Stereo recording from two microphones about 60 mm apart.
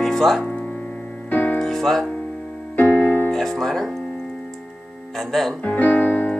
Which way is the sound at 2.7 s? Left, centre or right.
Left.